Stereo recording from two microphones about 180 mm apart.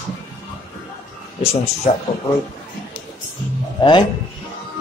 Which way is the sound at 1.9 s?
45° left (ahead or behind).